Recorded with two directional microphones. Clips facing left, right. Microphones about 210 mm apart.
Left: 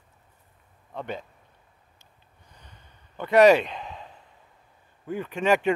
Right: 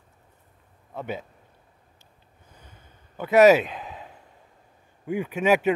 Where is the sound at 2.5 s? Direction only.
5° right (ahead or behind).